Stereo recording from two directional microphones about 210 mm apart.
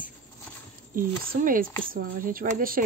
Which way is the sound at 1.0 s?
40° right (ahead or behind).